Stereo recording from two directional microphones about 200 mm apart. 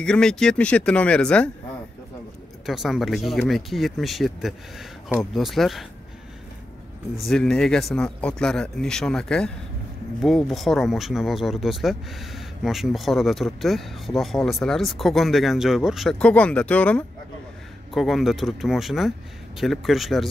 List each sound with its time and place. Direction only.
0.0 s speech: 5° left (ahead or behind)
2.6 s speech: centre (ahead or behind)
7.2 s speech: centre (ahead or behind)